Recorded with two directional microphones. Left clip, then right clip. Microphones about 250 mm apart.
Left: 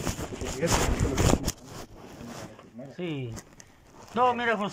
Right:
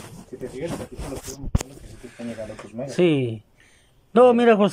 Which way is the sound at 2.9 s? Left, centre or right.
Right.